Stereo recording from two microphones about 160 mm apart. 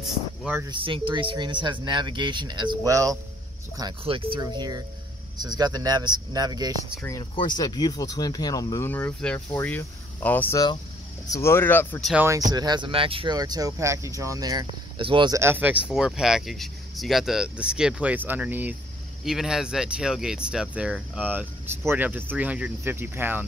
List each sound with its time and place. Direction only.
0.7 s speech: 30° right (ahead or behind)
4.0 s speech: 35° right (ahead or behind)
7.3 s speech: 25° left (ahead or behind)
12.0 s speech: 5° right (ahead or behind)
12.3 s speech: 25° right (ahead or behind)
15.3 s speech: 15° right (ahead or behind)